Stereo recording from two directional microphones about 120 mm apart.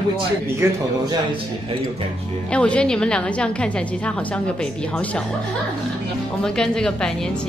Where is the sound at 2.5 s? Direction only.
10° left (ahead or behind).